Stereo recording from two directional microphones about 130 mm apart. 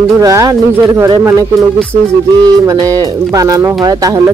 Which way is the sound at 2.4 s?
30° right (ahead or behind).